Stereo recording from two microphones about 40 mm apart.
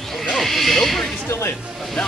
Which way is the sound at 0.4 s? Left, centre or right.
Centre.